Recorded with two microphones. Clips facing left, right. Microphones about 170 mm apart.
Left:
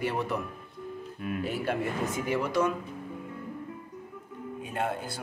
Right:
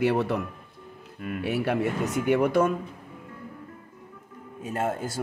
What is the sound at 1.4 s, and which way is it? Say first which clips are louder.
Speech: right 6 dB; 70° right (ahead or behind).